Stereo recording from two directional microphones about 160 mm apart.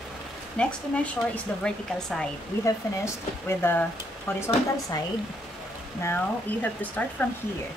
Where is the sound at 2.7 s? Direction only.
15° left (ahead or behind).